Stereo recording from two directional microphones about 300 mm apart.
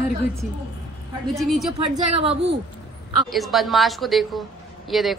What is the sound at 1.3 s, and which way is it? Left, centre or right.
Speech, centre.